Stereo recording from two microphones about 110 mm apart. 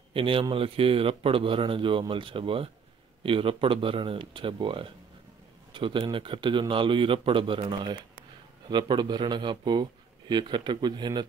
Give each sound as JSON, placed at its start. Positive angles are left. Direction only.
{"t": 0.1, "sound": "speech", "side_deg": -55}